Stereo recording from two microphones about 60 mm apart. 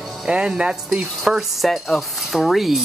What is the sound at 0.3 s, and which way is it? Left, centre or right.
Speech, centre.